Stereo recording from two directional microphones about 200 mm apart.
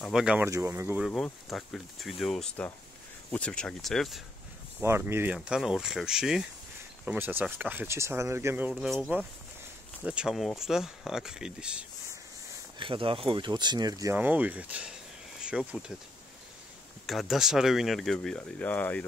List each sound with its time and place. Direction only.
0.0 s speech: 5° right (ahead or behind)
0.5 s speech: 15° right (ahead or behind)
1.0 s speech: centre (ahead or behind)
4.8 s speech: 10° right (ahead or behind)
12.7 s speech: 25° right (ahead or behind); by 15.8 s 5° right (ahead or behind)
17.0 s speech: centre (ahead or behind)